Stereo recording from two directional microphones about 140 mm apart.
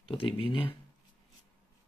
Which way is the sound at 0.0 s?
40° left (ahead or behind).